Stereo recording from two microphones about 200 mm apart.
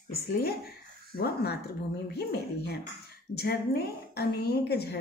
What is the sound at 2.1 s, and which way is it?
A woman's voice, 55° left (ahead or behind).